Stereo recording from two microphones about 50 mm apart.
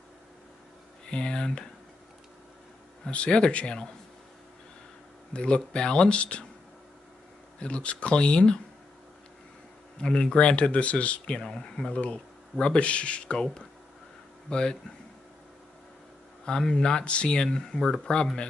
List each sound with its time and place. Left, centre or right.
1.0 s speech: centre
3.1 s speech: centre
5.3 s speech: left
7.6 s speech: left
9.9 s speech: centre
11.9 s speech: left
16.4 s speech: centre